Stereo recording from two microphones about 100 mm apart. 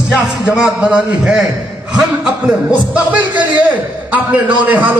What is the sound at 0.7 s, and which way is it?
A man's voice, 10° right (ahead or behind).